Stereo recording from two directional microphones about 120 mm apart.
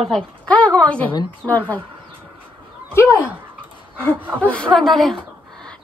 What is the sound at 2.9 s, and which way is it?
Speech, 20° left (ahead or behind).